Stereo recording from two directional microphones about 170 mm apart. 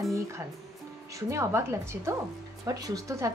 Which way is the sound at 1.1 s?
15° right (ahead or behind).